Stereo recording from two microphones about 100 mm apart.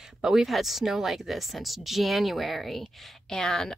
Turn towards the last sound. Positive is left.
turn(degrees=5)  # may be behind; listen again after turning